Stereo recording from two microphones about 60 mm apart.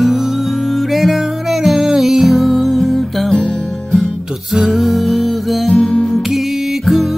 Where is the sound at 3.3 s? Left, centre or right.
Centre.